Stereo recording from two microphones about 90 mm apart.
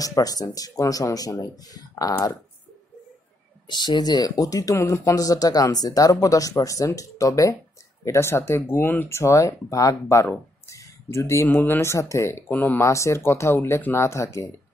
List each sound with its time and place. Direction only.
0.0 s speech: 40° left (ahead or behind)
3.6 s speech: 55° left (ahead or behind); by 10.2 s 35° left (ahead or behind)
10.7 s a sound: 35° left (ahead or behind)
11.4 s speech: 20° left (ahead or behind)
12.5 s speech: 20° left (ahead or behind)
12.8 s speech: 35° left (ahead or behind)
14.0 s speech: 35° left (ahead or behind)